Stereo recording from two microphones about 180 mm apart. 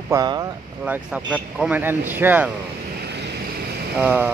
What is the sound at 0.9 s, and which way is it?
Speech, 5° right (ahead or behind).